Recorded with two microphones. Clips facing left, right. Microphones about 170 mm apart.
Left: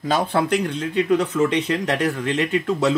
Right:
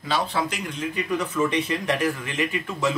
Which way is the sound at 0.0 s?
50° left (ahead or behind).